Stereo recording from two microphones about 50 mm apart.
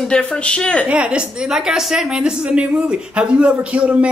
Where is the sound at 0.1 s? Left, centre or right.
Centre.